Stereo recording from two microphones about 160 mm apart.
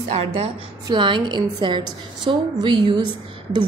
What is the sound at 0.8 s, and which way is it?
A woman's voice, 30° right (ahead or behind).